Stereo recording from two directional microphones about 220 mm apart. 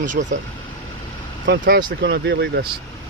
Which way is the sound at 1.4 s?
50° right (ahead or behind).